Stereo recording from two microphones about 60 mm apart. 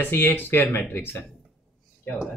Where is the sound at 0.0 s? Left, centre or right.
Left.